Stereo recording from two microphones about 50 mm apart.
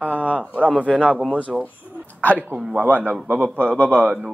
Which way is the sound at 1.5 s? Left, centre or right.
Centre.